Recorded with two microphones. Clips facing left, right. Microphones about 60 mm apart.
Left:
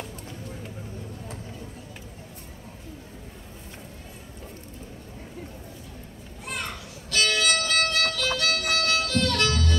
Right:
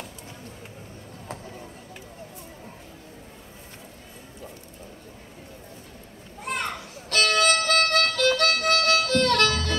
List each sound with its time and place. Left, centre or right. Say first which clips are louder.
6.4 s music: right 4 dB; right